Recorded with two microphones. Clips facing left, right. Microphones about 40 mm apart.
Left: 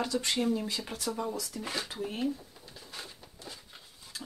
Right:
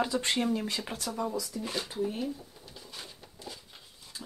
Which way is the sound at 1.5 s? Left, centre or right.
Centre.